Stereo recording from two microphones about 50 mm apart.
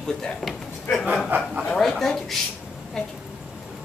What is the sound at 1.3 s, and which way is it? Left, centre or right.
Speech, right.